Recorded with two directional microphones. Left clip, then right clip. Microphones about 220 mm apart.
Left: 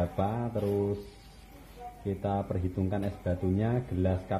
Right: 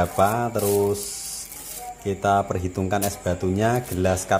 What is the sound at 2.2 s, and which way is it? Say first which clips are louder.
Speech: right 13 dB; 15° right (ahead or behind).